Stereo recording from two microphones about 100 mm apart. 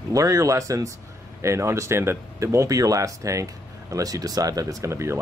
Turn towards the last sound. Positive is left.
turn(degrees=-30)  # may be behind; listen again after turning